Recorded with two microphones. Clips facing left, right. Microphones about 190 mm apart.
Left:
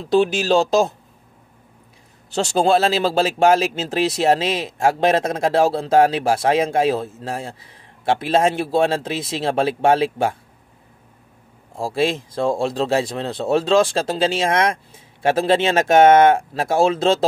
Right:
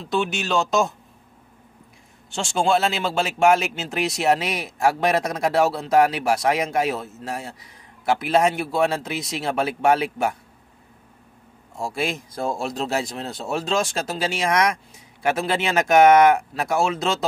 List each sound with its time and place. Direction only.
0.0 s speech: 35° left (ahead or behind)
2.3 s speech: 35° left (ahead or behind)
11.7 s speech: 30° left (ahead or behind)